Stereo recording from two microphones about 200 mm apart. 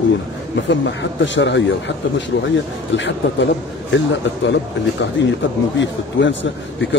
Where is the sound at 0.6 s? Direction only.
65° left (ahead or behind).